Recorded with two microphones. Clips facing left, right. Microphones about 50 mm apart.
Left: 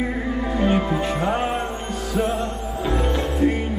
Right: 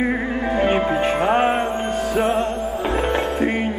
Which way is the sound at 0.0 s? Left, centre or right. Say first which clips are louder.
Right 3 dB; right.